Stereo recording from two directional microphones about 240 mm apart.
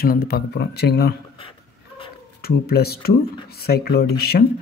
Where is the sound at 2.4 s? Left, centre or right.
Left.